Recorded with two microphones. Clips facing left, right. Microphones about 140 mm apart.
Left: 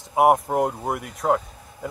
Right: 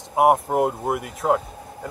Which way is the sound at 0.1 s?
Centre (ahead or behind).